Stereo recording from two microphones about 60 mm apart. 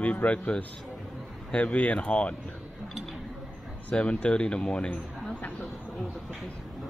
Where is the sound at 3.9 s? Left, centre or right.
Centre.